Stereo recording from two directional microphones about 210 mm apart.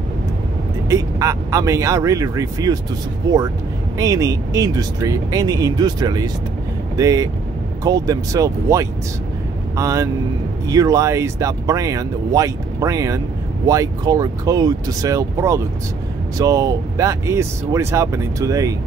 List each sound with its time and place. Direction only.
0.8 s speech: 15° right (ahead or behind)